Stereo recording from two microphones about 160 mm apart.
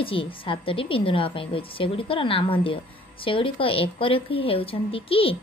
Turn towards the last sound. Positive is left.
turn(degrees=35)  # may be behind; listen again after turning